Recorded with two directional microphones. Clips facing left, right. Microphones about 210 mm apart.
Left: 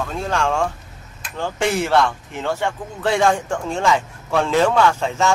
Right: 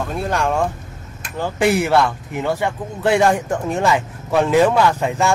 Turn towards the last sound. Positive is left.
turn(degrees=-15)  # may be behind; listen again after turning